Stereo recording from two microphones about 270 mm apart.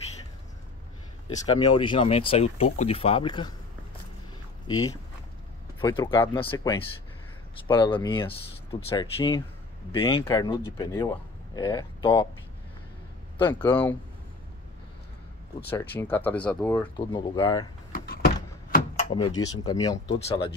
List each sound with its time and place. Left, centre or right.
1.4 s speech: centre
4.6 s a man's voice: centre
13.4 s a man's voice: centre
15.9 s a man's voice: centre
17.9 s power windows: left
19.0 s a man's voice: centre